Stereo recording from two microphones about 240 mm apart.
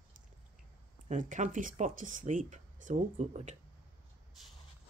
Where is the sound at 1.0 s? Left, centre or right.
Right.